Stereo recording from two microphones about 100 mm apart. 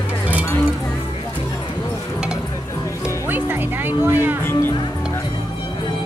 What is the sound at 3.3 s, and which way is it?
Music, 20° right (ahead or behind).